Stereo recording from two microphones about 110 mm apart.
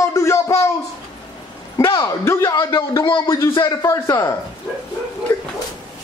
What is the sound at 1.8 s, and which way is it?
Speech, 25° left (ahead or behind).